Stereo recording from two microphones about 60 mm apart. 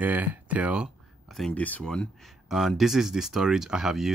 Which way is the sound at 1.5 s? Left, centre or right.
Left.